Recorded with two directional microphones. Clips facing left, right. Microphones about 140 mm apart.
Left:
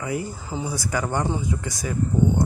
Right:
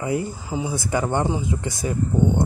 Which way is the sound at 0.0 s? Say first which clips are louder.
Right 3 dB; 25° right (ahead or behind).